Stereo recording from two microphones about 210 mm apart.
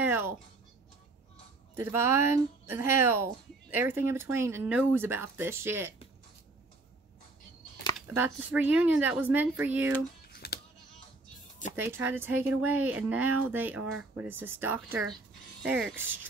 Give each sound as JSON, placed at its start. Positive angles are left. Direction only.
{"t": 0.0, "sound": "speech", "side_deg": -10}
{"t": 1.8, "sound": "speech", "side_deg": -10}
{"t": 8.1, "sound": "speech", "side_deg": -10}
{"t": 10.3, "sound": "music", "side_deg": 50}
{"t": 11.7, "sound": "speech", "side_deg": -10}